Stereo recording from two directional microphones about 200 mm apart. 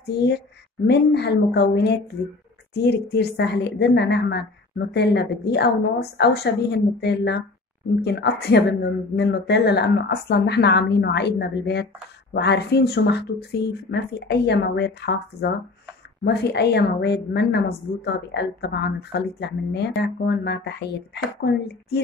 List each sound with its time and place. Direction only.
0.0 s a woman's voice: 55° left (ahead or behind)